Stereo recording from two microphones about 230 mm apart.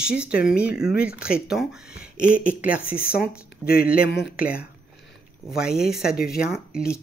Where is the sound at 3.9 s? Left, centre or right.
Left.